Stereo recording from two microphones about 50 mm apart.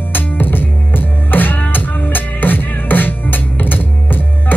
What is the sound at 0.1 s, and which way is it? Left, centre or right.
Music, left.